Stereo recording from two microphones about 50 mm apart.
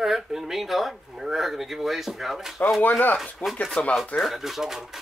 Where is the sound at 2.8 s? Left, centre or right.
Left.